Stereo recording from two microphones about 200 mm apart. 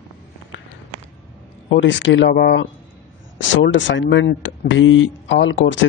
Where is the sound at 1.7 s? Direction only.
65° left (ahead or behind).